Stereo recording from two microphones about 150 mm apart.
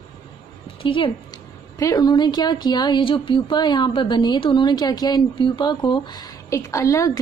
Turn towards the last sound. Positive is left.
turn(degrees=20)  # may be behind; listen again after turning